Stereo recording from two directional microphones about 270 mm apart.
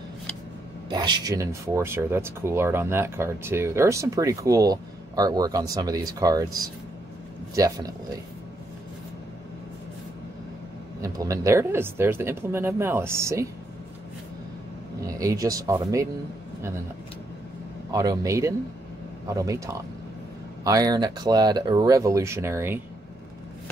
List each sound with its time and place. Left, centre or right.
0.8 s speech: centre
11.0 s speech: centre
15.0 s speech: centre
17.9 s speech: centre